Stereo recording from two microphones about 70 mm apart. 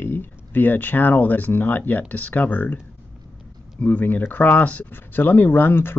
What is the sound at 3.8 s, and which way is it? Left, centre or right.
Speech, left.